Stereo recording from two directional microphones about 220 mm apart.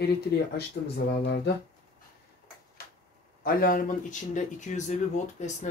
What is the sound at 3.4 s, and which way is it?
Speech, 40° left (ahead or behind).